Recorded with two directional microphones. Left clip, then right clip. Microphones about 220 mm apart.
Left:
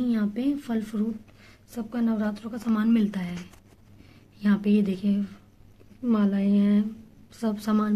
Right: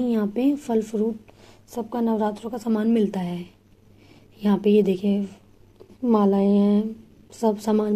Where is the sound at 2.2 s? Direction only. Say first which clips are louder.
Right 6 dB; 10° right (ahead or behind).